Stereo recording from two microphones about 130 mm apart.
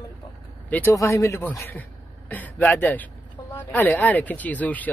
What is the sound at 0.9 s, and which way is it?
A man's voice, 25° left (ahead or behind).